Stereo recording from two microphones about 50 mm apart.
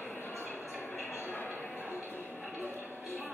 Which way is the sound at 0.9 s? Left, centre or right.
Left.